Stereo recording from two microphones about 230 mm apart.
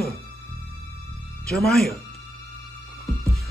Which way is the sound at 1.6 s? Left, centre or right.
Centre.